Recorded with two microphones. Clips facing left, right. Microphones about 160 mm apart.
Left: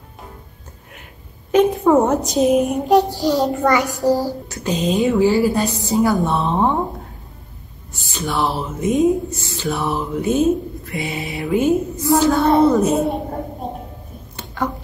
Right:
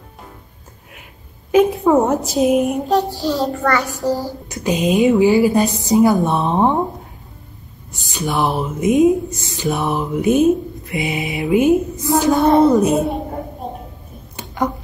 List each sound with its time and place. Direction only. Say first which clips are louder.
1.5 s a woman's voice: right 1 dB; centre (ahead or behind)
2.9 s a child's voice: left 3 dB; 15° left (ahead or behind)
4.5 s speech: right 7 dB; 15° right (ahead or behind)
7.9 s speech: right 2 dB; 15° right (ahead or behind)
12.4 s a woman's voice: right 3 dB; centre (ahead or behind)
14.6 s speech: right 3 dB; 15° right (ahead or behind)